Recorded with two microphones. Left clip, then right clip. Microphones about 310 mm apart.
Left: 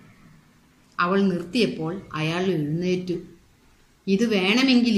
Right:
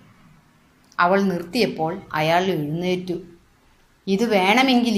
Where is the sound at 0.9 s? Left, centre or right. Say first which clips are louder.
Right 4 dB; centre.